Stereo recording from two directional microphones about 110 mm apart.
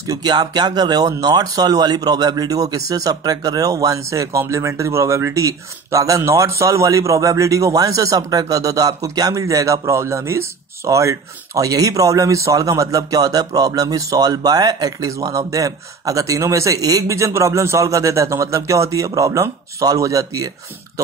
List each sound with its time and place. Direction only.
0.0 s speech: 35° right (ahead or behind)